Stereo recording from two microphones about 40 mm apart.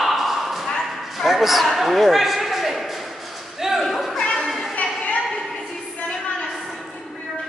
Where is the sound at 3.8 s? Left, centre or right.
Centre.